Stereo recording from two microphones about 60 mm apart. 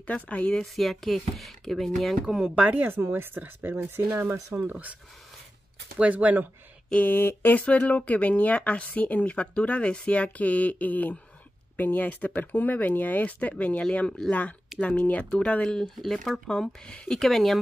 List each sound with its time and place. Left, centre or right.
0.0 s speech: left
0.7 s speech: centre
2.2 s speech: centre
2.5 s speech: right
4.6 s speech: right
5.9 s speech: right
6.9 s a sound: left
7.6 s speech: left; by 17.6 s centre